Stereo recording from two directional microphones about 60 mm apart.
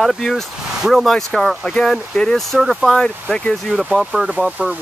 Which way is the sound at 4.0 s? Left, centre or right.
Centre.